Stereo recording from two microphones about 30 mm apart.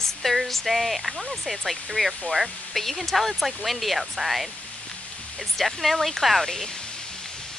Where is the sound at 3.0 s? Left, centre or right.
Centre.